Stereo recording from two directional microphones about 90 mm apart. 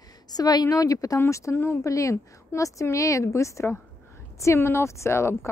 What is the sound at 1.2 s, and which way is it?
A woman's voice, 30° left (ahead or behind).